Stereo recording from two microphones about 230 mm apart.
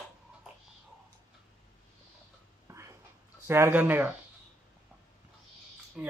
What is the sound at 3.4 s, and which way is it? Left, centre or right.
Speech, centre.